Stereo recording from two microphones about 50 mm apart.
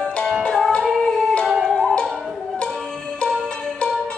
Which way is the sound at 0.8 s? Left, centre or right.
Centre.